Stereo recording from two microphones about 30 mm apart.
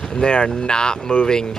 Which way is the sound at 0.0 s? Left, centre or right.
Left.